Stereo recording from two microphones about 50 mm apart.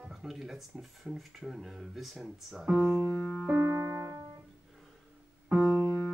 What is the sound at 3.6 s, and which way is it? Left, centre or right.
Music, right.